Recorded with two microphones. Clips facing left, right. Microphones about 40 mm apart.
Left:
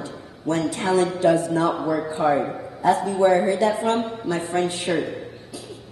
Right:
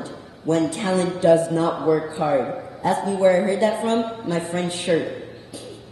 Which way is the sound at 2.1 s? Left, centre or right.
Left.